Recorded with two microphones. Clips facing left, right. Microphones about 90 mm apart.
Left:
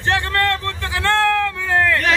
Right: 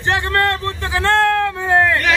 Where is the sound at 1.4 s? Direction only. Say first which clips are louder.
Right 3 dB; 20° right (ahead or behind).